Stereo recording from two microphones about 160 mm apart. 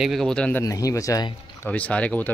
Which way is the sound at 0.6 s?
20° left (ahead or behind).